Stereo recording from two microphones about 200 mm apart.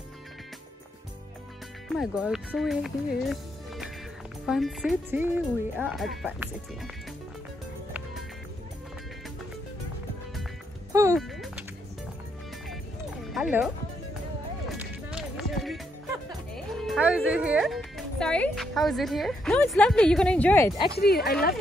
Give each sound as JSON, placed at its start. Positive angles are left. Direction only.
{"t": 1.9, "sound": "speech", "side_deg": -5}
{"t": 10.9, "sound": "music", "side_deg": -15}
{"t": 11.1, "sound": "music", "side_deg": 0}
{"t": 13.3, "sound": "music", "side_deg": -5}
{"t": 14.7, "sound": "music", "side_deg": -5}
{"t": 21.2, "sound": "speech", "side_deg": 50}